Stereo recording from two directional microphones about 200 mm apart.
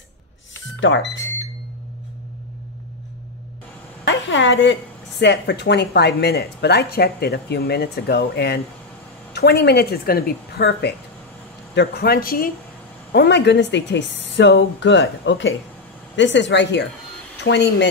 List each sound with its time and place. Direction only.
0.7 s speech: 65° left (ahead or behind)
4.0 s a sound: 65° left (ahead or behind)
5.2 s a woman's voice: 60° left (ahead or behind)